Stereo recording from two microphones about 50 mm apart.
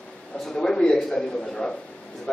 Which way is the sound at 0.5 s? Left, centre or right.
Centre.